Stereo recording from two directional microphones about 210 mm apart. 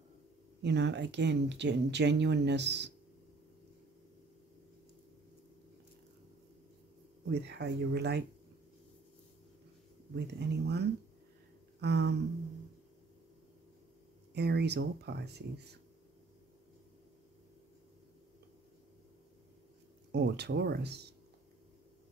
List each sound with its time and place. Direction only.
0.6 s speech: 55° right (ahead or behind)
7.3 s speech: 55° right (ahead or behind)
10.1 s speech: 55° right (ahead or behind)
14.3 s speech: 50° right (ahead or behind)
20.1 s speech: 55° right (ahead or behind)